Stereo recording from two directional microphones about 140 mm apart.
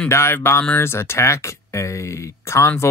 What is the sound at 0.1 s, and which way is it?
Speech, 15° left (ahead or behind).